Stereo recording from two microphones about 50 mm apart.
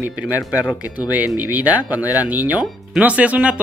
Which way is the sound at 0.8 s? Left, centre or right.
Right.